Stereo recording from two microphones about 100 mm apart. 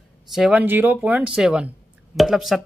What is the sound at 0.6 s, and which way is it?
Speech, 20° right (ahead or behind).